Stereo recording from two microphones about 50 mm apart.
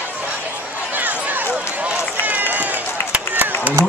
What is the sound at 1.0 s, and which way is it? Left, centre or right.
Run, right.